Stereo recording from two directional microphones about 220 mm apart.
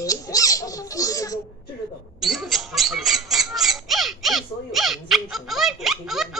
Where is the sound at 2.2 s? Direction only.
Centre (ahead or behind).